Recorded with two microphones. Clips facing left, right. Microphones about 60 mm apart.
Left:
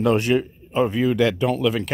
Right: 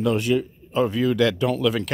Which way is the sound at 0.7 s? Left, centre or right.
Left.